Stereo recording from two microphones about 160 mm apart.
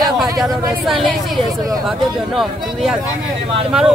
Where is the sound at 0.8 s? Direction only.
Centre (ahead or behind).